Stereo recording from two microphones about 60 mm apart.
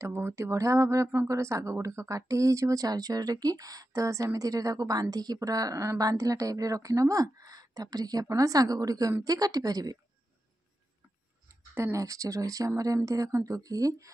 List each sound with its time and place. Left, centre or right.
0.1 s a woman's voice: right
11.4 s speech: right